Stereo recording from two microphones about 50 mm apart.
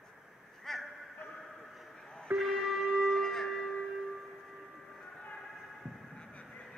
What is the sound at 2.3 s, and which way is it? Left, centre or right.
Shofar, centre.